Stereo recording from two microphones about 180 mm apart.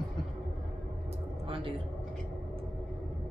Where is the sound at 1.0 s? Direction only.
30° right (ahead or behind).